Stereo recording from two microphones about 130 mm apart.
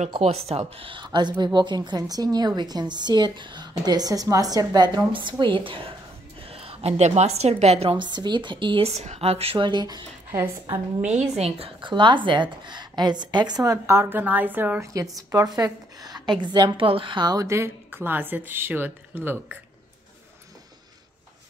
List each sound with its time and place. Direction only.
0.5 s a woman's voice: 50° right (ahead or behind)
8.9 s a woman's voice: 60° right (ahead or behind); by 10.0 s 35° right (ahead or behind)
11.1 s a woman's voice: 55° right (ahead or behind); by 14.9 s 15° right (ahead or behind)
14.9 s a woman's voice: 25° right (ahead or behind)